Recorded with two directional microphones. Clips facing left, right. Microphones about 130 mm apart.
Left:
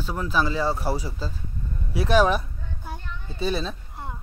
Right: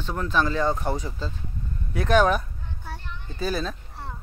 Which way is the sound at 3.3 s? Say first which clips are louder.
Left 1 dB; 25° left (ahead or behind).